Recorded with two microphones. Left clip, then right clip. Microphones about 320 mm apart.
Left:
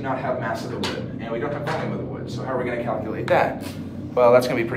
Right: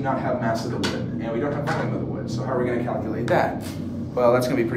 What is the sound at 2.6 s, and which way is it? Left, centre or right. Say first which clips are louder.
Speech: even; centre.